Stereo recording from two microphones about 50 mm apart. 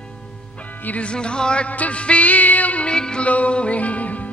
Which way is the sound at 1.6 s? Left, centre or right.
Left.